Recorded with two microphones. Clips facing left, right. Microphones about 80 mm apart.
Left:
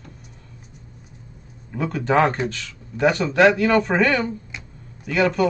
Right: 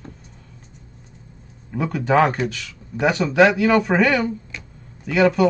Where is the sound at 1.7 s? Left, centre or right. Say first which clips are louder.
Right 1 dB; centre.